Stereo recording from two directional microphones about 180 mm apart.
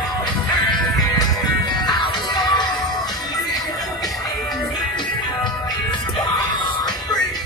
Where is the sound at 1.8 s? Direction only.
25° left (ahead or behind).